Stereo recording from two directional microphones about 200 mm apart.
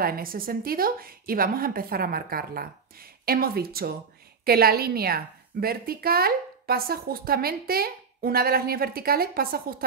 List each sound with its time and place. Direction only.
0.0 s a woman's voice: 45° right (ahead or behind)